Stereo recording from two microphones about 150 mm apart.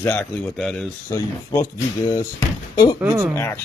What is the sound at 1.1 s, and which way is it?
A man's voice, 20° left (ahead or behind).